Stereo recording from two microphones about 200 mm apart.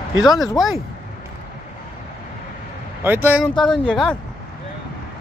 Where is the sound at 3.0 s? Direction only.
10° right (ahead or behind).